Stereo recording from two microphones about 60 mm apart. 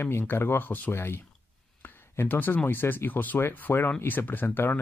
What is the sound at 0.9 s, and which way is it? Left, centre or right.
Speech, left.